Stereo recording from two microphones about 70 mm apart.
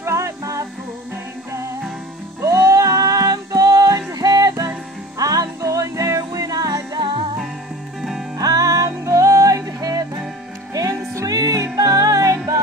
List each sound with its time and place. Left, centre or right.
0.0 s music: right
2.4 s music: right
8.4 s music: right